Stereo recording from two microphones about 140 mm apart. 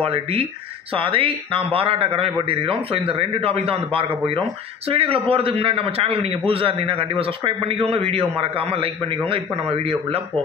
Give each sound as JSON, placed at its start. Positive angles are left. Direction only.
{"t": 0.0, "sound": "a man's voice", "side_deg": -45}